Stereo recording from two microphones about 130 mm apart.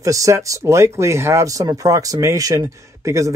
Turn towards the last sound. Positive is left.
turn(degrees=-25)  # may be behind; listen again after turning